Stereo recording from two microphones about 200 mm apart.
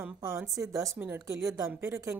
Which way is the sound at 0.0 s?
10° right (ahead or behind).